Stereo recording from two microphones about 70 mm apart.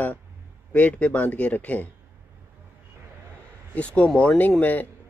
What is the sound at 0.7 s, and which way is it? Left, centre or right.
Speech, centre.